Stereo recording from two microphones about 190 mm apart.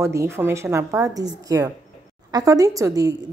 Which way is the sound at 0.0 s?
15° right (ahead or behind).